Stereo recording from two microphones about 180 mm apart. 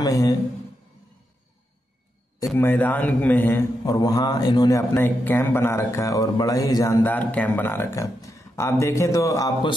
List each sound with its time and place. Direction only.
0.0 s a man's voice: 20° left (ahead or behind)
2.4 s a man's voice: 10° left (ahead or behind)